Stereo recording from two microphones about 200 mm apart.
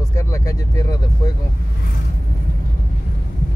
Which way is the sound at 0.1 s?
15° left (ahead or behind).